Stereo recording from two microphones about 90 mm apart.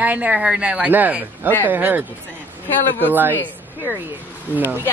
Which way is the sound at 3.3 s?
25° left (ahead or behind).